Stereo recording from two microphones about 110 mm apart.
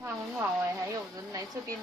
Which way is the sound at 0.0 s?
20° right (ahead or behind).